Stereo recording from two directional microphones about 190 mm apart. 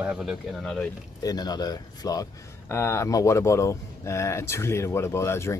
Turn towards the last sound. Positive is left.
turn(degrees=15)  # may be behind; listen again after turning